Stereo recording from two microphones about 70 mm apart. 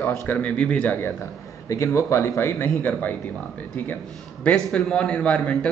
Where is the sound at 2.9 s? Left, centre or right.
Left.